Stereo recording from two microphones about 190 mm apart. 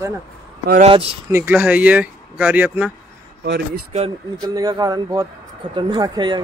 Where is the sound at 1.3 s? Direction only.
10° right (ahead or behind).